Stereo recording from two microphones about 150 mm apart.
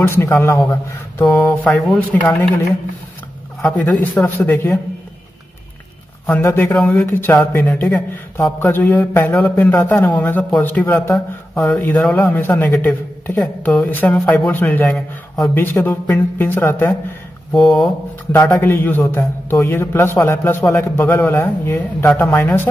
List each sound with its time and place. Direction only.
0.1 s a man's voice: 15° left (ahead or behind)
3.6 s a man's voice: 10° left (ahead or behind)
6.2 s a man's voice: 10° left (ahead or behind)
17.5 s speech: centre (ahead or behind)
18.6 s a man's voice: 15° left (ahead or behind)